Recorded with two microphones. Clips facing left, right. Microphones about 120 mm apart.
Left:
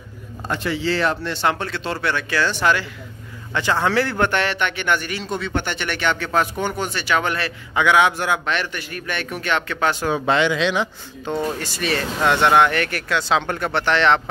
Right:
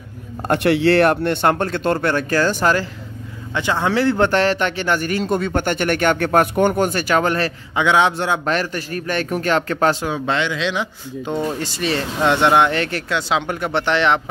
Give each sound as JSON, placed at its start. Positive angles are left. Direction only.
{"t": 0.5, "sound": "speech", "side_deg": -65}
{"t": 3.5, "sound": "speech", "side_deg": -15}
{"t": 4.3, "sound": "speech", "side_deg": -35}
{"t": 7.7, "sound": "speech", "side_deg": -25}
{"t": 8.5, "sound": "a man's voice", "side_deg": -40}
{"t": 10.1, "sound": "speech", "side_deg": 5}
{"t": 11.3, "sound": "speech", "side_deg": -15}
{"t": 13.3, "sound": "speech", "side_deg": -15}